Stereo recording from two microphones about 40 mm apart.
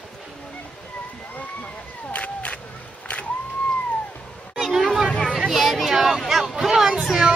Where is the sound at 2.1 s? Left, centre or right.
Left.